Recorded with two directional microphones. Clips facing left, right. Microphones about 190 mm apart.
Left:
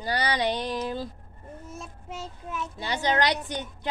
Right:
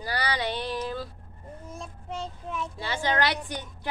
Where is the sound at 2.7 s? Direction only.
20° left (ahead or behind).